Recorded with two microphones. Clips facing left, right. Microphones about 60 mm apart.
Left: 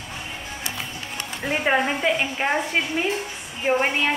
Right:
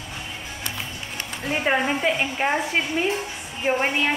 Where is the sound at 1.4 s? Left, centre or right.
Centre.